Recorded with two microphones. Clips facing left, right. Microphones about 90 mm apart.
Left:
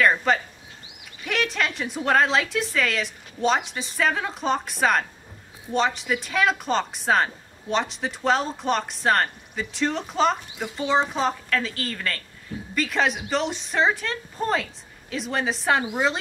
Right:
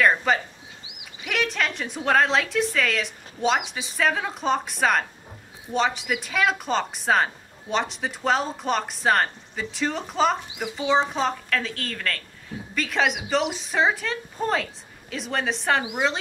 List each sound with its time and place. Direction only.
0.0 s speech: centre (ahead or behind)